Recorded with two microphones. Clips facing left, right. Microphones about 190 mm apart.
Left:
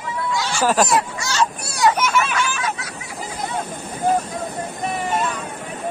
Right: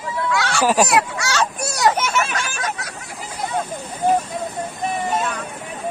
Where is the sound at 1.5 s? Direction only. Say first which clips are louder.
Right 1 dB; 40° right (ahead or behind).